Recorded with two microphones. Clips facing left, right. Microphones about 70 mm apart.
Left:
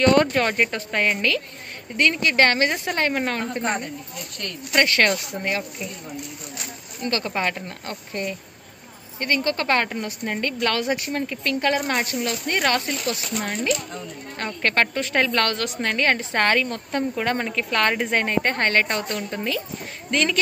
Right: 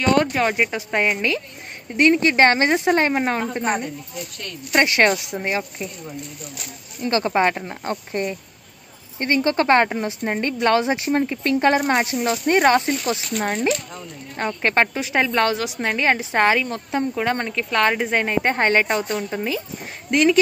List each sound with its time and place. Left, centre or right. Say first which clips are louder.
0.0 s a woman's voice: left 1 dB; centre
7.1 s speech: right 6 dB; right
14.3 s a woman's voice: right 3 dB; centre